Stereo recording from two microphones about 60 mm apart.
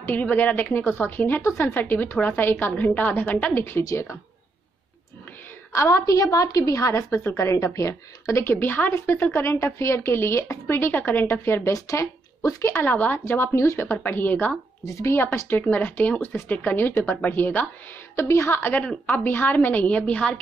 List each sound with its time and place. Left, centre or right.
0.0 s a woman's voice: left
3.9 s a woman's voice: left
5.7 s a woman's voice: left
8.5 s a woman's voice: left
11.7 s a woman's voice: left
12.8 s a woman's voice: left
13.5 s a woman's voice: left
14.0 s a woman's voice: left
14.9 s a woman's voice: left
15.5 s a woman's voice: left
18.1 s a woman's voice: left
19.0 s a woman's voice: left